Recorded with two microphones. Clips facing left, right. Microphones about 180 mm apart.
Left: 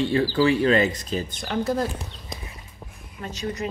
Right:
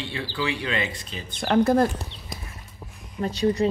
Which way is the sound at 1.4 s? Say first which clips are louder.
Right 8 dB; 60° right (ahead or behind).